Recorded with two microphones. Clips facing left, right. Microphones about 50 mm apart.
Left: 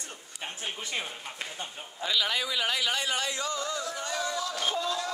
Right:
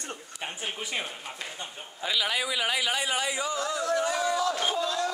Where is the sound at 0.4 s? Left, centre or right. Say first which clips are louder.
Right 1 dB; centre.